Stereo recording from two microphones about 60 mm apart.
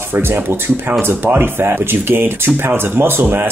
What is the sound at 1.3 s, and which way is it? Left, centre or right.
Speech, right.